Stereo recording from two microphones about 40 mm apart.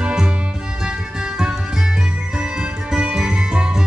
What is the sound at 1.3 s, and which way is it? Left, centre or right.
Music, centre.